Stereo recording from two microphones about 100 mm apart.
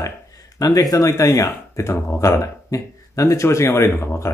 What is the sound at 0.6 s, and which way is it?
Speech, 35° left (ahead or behind).